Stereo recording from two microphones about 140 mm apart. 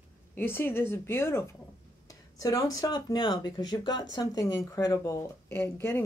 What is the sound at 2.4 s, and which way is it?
Speech, 25° left (ahead or behind).